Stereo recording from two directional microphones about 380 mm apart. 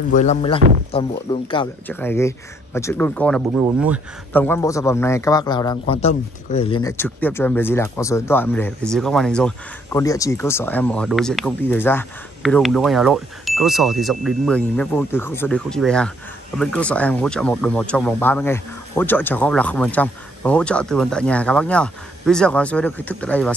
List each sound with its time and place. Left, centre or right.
0.1 s a man's voice: centre